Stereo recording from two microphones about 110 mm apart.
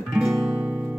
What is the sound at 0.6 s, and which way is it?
Music, 15° right (ahead or behind).